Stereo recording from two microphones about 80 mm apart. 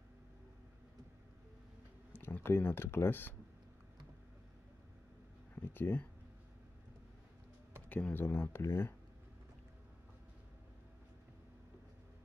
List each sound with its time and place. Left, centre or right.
2.1 s speech: left
5.7 s speech: left
7.9 s speech: left